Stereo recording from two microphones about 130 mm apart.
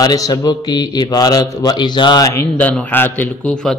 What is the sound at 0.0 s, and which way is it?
A man's voice, 30° left (ahead or behind).